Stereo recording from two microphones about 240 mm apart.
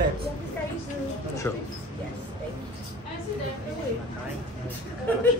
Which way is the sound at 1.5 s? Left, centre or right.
Centre.